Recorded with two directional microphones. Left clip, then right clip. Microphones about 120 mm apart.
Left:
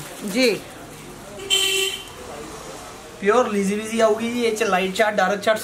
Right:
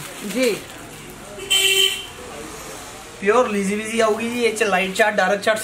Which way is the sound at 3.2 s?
10° left (ahead or behind).